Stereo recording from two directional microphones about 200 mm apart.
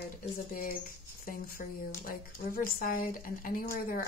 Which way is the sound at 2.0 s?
45° left (ahead or behind).